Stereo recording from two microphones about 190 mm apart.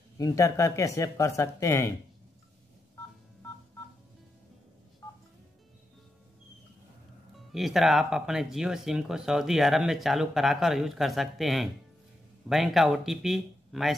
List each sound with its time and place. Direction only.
0.2 s speech: 15° left (ahead or behind)
7.3 s speech: centre (ahead or behind)